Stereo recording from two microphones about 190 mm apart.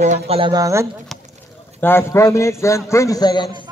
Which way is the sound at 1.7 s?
10° left (ahead or behind).